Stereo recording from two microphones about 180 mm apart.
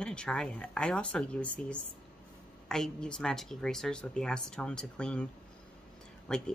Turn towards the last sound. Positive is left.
turn(degrees=5)  # may be behind; listen again after turning